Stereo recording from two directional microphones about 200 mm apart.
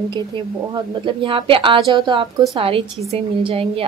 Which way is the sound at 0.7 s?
25° right (ahead or behind).